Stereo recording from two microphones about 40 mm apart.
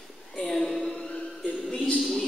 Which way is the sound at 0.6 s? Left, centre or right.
Centre.